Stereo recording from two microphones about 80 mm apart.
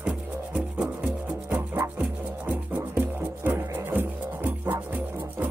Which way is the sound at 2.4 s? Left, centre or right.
Right.